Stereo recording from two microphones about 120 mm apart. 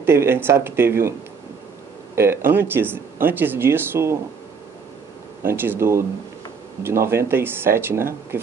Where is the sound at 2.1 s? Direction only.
20° right (ahead or behind).